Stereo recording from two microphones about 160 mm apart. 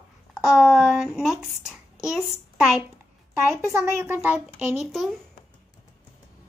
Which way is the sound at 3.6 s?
20° right (ahead or behind).